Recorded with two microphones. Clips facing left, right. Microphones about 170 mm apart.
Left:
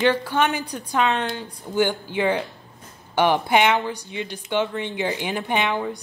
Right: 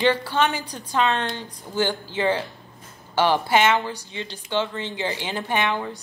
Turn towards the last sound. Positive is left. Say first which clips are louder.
# left 1 dB
turn(degrees=15)  # may be behind; listen again after turning